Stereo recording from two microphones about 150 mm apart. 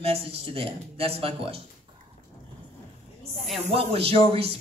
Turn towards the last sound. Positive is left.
turn(degrees=-40)  # may be behind; listen again after turning